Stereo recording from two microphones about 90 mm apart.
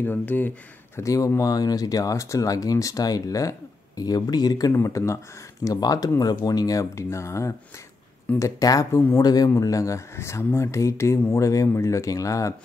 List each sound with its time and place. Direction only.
0.0 s speech: 20° left (ahead or behind)
0.9 s speech: 40° left (ahead or behind)
4.7 s a man's voice: 35° left (ahead or behind)